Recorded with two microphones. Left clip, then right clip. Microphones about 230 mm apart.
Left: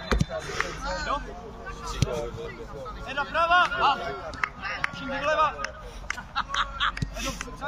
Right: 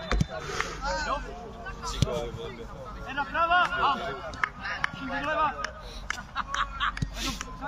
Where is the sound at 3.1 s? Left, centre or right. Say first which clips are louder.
Left 2 dB; left.